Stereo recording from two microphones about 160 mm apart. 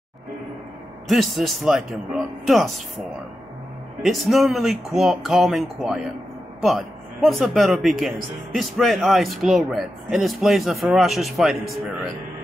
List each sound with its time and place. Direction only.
1.0 s speech: centre (ahead or behind)
4.0 s speech: centre (ahead or behind)